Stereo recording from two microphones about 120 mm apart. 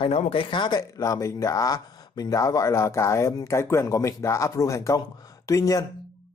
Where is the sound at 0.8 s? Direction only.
25° left (ahead or behind).